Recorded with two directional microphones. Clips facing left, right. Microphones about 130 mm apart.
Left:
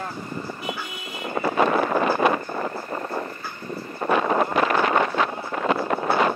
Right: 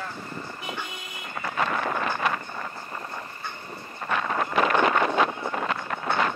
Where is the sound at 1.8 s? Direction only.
40° left (ahead or behind).